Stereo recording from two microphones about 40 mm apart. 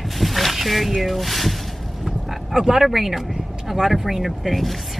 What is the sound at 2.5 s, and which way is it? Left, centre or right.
Speech, centre.